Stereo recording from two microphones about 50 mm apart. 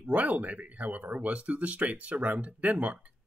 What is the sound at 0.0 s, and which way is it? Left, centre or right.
Speech, right.